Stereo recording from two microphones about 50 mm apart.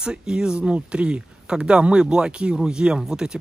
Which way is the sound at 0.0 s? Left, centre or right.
Centre.